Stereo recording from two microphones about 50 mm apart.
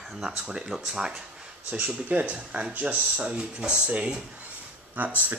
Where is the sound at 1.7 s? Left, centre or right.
Right.